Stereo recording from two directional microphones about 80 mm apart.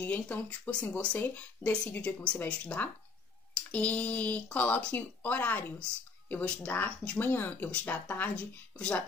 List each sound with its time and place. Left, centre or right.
0.0 s speech: centre